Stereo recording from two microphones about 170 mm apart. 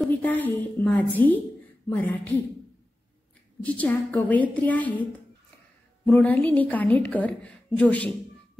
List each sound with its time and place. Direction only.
0.0 s a woman's voice: 10° left (ahead or behind)
3.6 s a woman's voice: 10° left (ahead or behind)
6.0 s a woman's voice: 5° left (ahead or behind)